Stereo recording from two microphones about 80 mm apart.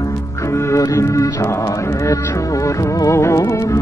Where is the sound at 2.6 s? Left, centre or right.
Left.